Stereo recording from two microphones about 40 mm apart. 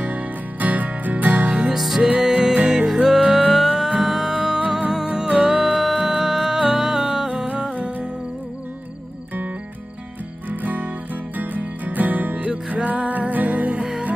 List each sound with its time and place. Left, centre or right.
0.0 s music: right
1.7 s music: centre
3.3 s music: right
3.5 s music: centre; by 7.9 s right
10.5 s music: right
12.4 s music: right